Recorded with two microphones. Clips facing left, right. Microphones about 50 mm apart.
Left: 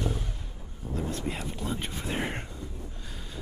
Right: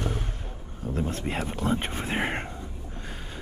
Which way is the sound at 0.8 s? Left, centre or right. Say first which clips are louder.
Right 3 dB; right.